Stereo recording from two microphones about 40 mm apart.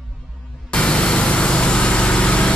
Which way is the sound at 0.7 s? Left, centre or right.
Left.